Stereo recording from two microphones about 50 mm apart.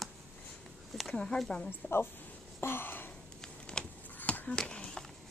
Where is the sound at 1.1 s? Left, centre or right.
Centre.